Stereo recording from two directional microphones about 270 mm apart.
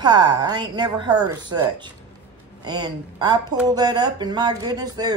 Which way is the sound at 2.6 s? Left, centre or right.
Centre.